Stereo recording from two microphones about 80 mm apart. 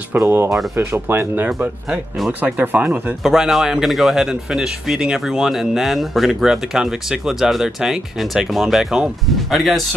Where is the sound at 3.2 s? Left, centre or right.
Centre.